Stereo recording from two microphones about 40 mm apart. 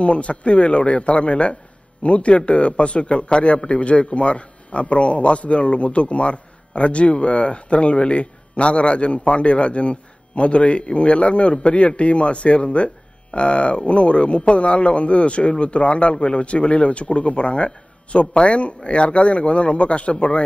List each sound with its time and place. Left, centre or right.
0.0 s a man's voice: left